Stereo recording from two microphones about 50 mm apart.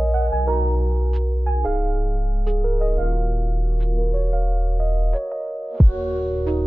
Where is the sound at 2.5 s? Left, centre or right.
Centre.